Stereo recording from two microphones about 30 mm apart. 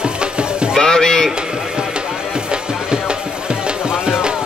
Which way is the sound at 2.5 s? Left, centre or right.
Right.